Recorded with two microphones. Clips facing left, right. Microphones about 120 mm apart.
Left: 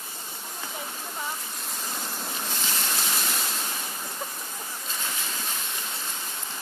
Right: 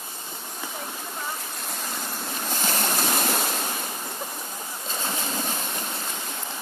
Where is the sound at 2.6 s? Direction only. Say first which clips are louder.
Right 8 dB; 50° right (ahead or behind).